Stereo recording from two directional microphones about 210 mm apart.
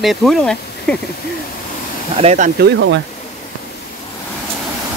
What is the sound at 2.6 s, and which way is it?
Speech, 60° right (ahead or behind).